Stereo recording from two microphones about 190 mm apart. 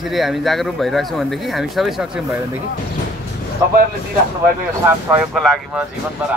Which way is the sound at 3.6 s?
15° right (ahead or behind).